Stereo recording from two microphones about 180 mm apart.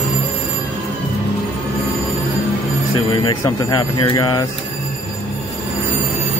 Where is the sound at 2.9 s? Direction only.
25° left (ahead or behind).